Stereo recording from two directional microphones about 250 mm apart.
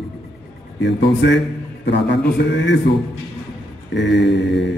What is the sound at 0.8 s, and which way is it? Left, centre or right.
Speech, left.